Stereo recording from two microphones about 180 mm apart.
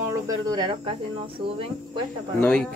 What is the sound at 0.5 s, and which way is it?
Speech, 25° right (ahead or behind).